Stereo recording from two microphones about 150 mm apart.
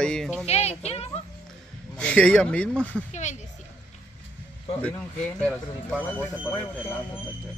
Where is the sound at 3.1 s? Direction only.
50° left (ahead or behind).